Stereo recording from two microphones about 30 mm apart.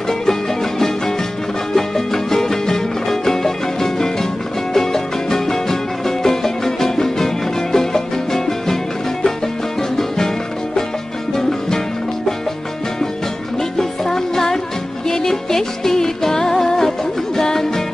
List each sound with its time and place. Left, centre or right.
0.3 s music: centre
9.8 s music: centre
13.6 s music: centre